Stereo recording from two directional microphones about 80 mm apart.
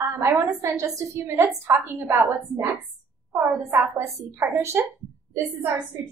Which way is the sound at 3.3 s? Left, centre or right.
Right.